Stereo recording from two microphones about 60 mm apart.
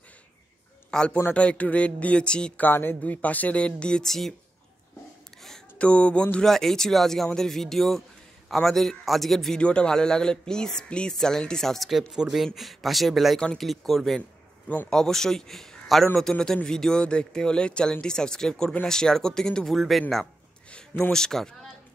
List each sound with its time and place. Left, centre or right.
0.9 s speech: centre
2.6 s speech: left; by 4.3 s centre
5.8 s speech: centre
6.4 s a man's voice: centre
9.6 s speech: centre
12.1 s a man's voice: centre